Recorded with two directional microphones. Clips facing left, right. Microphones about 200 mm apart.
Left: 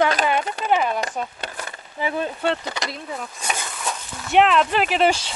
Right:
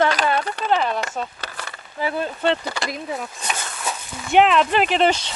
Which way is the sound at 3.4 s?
10° left (ahead or behind).